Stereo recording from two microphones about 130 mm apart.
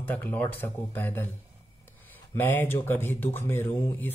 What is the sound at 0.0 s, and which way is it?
Speech, 15° left (ahead or behind).